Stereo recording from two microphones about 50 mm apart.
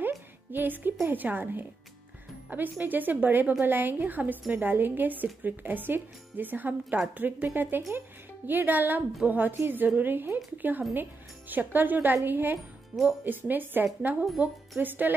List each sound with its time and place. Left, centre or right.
0.0 s music: right
1.0 s a woman's voice: right
14.4 s a woman's voice: right